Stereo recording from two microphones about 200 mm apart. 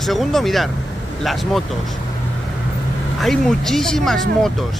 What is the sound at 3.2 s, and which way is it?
Speech, centre (ahead or behind).